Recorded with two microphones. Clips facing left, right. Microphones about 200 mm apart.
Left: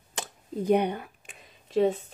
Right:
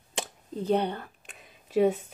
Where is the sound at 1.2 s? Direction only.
Centre (ahead or behind).